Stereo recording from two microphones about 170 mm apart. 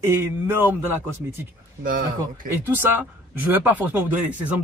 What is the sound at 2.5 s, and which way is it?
Speech, 10° right (ahead or behind).